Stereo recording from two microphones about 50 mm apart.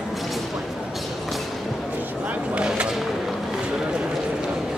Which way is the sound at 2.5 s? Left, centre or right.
Right.